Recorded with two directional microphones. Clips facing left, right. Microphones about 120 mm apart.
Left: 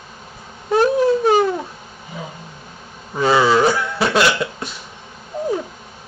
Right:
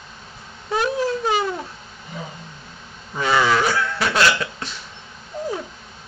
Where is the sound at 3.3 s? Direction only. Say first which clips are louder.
Left 4 dB; 20° left (ahead or behind).